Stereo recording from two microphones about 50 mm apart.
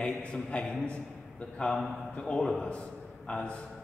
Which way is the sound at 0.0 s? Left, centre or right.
Left.